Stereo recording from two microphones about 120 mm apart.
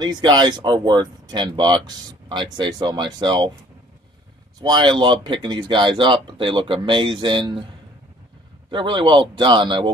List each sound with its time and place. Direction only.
0.0 s speech: 35° right (ahead or behind)
4.6 s speech: 35° right (ahead or behind)
8.6 s speech: 45° right (ahead or behind)